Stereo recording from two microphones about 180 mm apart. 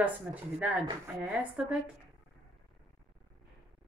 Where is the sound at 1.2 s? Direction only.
5° right (ahead or behind).